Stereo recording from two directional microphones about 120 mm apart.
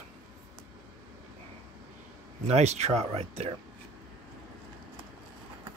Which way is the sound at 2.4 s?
65° right (ahead or behind).